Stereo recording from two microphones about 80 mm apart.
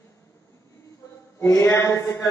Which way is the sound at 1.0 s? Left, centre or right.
Left.